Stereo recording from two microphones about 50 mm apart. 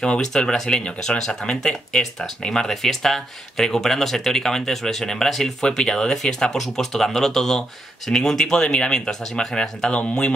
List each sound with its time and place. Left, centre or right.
0.0 s speech: centre
9.6 s speech: centre